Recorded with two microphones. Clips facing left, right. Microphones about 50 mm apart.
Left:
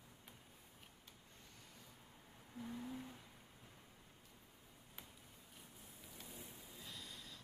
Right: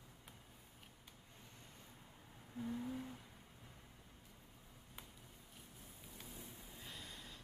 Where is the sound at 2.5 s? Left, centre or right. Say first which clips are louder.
Right 4 dB; centre.